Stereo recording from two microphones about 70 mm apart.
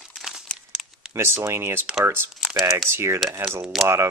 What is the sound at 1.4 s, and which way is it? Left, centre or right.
Speech, right.